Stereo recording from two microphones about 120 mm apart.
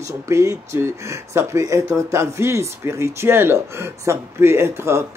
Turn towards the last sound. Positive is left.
turn(degrees=-20)  # may be behind; listen again after turning